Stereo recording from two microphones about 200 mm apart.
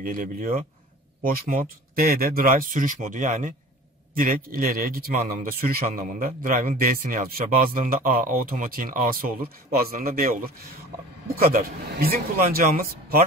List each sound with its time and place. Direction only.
0.0 s speech: 45° right (ahead or behind)